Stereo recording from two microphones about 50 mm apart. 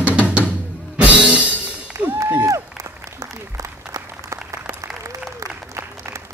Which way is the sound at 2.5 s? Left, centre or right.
Right.